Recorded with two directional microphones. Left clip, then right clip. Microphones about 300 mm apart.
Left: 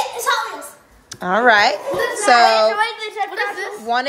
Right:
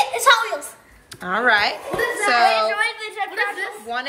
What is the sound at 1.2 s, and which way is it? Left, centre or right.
A woman's voice, centre.